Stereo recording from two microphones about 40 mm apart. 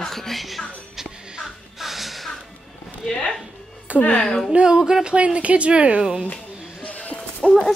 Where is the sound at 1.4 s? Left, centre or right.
Centre.